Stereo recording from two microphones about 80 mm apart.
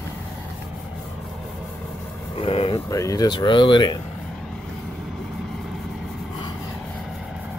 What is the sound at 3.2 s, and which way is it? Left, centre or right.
Speech, left.